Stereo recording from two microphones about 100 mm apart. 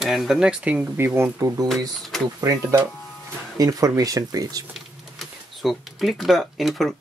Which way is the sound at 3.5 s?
35° right (ahead or behind).